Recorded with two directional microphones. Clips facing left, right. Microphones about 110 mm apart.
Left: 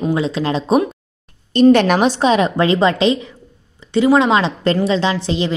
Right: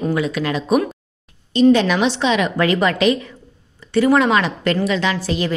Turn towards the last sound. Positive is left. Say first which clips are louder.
# left 2 dB
turn(degrees=25)  # may be behind; listen again after turning